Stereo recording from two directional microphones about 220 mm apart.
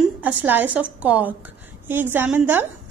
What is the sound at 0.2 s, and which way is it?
A woman's voice, 10° right (ahead or behind).